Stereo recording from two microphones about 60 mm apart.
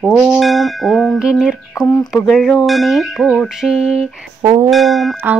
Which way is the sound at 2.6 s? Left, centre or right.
Centre.